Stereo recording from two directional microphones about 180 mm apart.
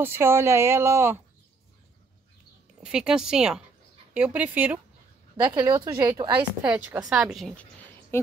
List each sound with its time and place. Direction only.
0.0 s speech: 15° right (ahead or behind)
2.8 s speech: 5° right (ahead or behind)
5.4 s a woman's voice: 20° right (ahead or behind)
6.6 s speech: 5° right (ahead or behind)
8.1 s speech: 15° left (ahead or behind)